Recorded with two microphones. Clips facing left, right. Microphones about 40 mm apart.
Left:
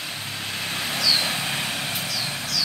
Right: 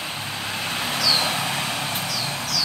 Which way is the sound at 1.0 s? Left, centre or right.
Centre.